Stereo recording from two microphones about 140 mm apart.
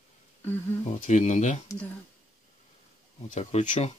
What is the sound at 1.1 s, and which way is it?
Speech, 55° left (ahead or behind).